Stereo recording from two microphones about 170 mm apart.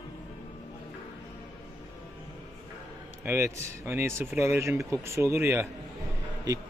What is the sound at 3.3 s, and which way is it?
Speech, 15° right (ahead or behind).